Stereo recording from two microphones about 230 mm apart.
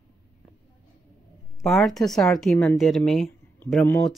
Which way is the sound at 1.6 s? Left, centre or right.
Centre.